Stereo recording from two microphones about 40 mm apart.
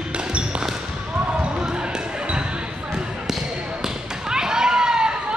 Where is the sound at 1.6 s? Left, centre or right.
Right.